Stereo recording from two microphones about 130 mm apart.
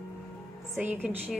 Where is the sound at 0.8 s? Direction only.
15° right (ahead or behind).